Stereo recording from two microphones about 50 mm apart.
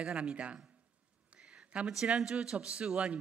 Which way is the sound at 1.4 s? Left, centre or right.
Right.